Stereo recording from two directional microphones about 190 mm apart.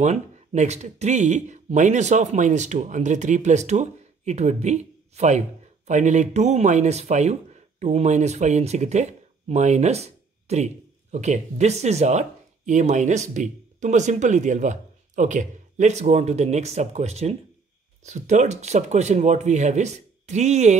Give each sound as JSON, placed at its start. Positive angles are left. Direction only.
{"t": 0.0, "sound": "speech", "side_deg": -35}